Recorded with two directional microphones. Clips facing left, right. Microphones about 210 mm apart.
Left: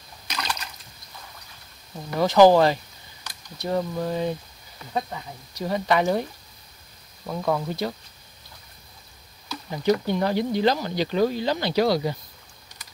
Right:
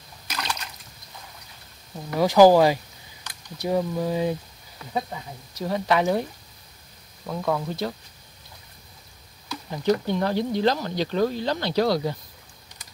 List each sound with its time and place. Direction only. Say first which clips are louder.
0.3 s splash: even; 5° right (ahead or behind)
2.1 s speech: right 1 dB; 10° right (ahead or behind)
7.2 s speech: left 1 dB; 5° left (ahead or behind)
9.7 s speech: left 1 dB; 5° left (ahead or behind)